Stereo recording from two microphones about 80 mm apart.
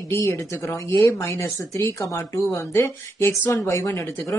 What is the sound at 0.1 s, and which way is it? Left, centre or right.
Speech, left.